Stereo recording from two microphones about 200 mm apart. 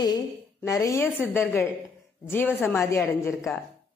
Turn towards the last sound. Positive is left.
turn(degrees=10)  # may be behind; listen again after turning